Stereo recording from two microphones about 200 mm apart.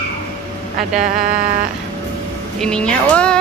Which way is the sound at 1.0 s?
45° right (ahead or behind).